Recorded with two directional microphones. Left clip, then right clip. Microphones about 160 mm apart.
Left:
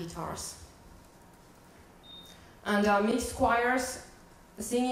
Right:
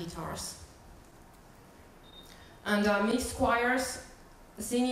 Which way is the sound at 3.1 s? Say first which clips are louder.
Left 1 dB; centre (ahead or behind).